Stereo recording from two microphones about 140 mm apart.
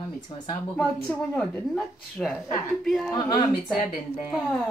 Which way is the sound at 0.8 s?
5° left (ahead or behind).